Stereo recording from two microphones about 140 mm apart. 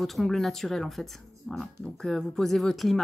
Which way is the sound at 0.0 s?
Centre (ahead or behind).